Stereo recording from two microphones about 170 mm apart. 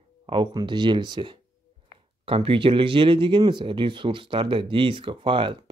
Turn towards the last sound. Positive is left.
turn(degrees=-30)  # may be behind; listen again after turning